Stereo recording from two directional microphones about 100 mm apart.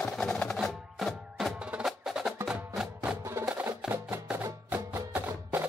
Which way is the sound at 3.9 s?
20° right (ahead or behind).